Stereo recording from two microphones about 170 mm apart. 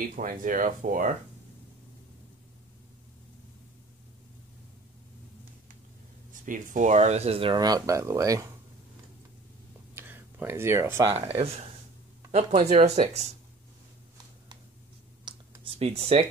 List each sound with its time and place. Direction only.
0.1 s speech: 55° right (ahead or behind)
6.4 s speech: 50° right (ahead or behind); by 8.5 s 20° right (ahead or behind)
9.9 s a sound: 15° right (ahead or behind)
11.1 s speech: 40° right (ahead or behind)
15.2 s computer keyboard: 35° right (ahead or behind)